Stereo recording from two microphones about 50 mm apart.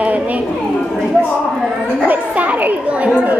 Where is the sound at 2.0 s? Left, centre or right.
Right.